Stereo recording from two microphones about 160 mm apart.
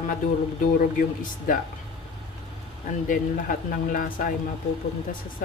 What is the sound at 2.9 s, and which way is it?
Speech, 55° left (ahead or behind).